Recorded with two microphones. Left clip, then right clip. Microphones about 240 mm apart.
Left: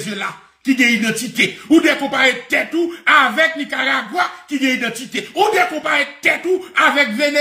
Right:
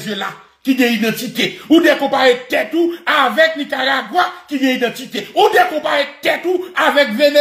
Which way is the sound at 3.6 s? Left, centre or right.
Centre.